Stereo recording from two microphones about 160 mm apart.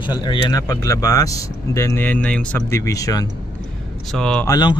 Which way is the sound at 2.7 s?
20° left (ahead or behind).